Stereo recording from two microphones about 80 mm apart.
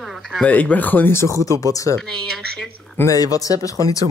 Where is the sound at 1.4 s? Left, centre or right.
Left.